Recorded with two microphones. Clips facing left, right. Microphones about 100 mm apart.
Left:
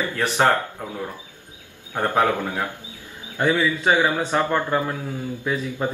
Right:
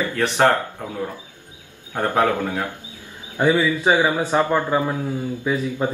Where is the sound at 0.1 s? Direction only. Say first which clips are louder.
Right 3 dB; 5° left (ahead or behind).